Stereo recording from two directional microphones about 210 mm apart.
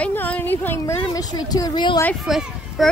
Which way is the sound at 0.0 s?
10° left (ahead or behind).